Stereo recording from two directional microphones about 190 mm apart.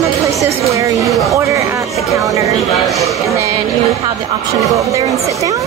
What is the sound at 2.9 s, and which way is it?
Speech, centre (ahead or behind).